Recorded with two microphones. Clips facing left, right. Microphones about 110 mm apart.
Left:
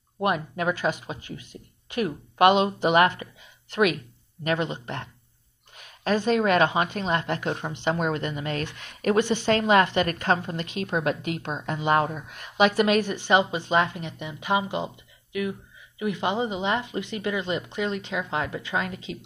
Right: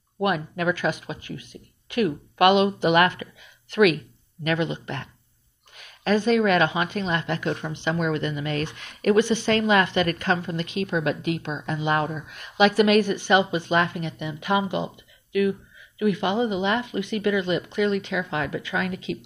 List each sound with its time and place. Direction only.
0.2 s a woman's voice: 35° left (ahead or behind)
4.5 s a woman's voice: 35° left (ahead or behind)
16.0 s speech: 25° left (ahead or behind)
19.1 s speech: 65° right (ahead or behind)